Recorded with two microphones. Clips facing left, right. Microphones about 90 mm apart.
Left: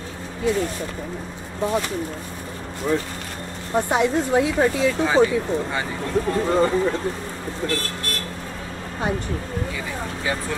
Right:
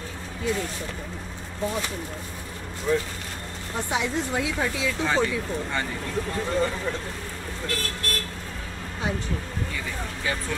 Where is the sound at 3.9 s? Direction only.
50° left (ahead or behind).